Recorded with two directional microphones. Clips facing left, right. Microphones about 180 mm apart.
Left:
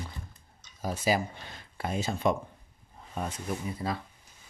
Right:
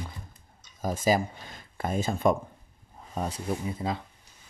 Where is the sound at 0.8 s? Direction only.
45° right (ahead or behind).